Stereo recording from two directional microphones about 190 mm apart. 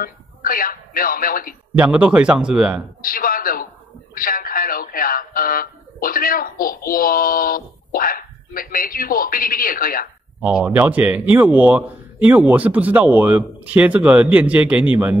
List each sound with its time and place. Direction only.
0.0 s speech: 50° left (ahead or behind)
1.8 s speech: 5° right (ahead or behind)
3.0 s a man's voice: 50° left (ahead or behind)
4.1 s buzzer: 50° left (ahead or behind)
6.6 s speech: 50° left (ahead or behind)
10.4 s a man's voice: 5° right (ahead or behind)